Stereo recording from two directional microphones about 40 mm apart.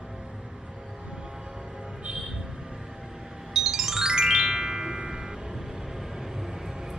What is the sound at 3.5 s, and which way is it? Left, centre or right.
Music, centre.